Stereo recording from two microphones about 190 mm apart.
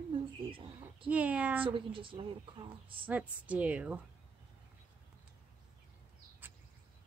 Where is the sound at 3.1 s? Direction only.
10° right (ahead or behind).